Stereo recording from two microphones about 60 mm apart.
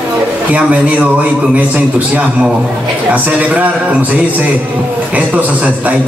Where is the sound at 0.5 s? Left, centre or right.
Right.